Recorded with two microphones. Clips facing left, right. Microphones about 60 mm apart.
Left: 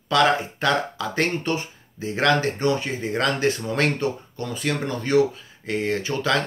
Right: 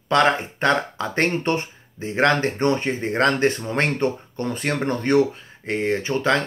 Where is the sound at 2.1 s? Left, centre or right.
Right.